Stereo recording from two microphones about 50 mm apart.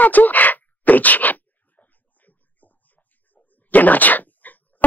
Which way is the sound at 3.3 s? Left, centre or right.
Left.